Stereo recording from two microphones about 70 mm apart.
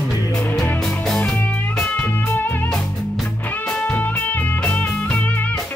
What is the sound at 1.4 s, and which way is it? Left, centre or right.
Music, left.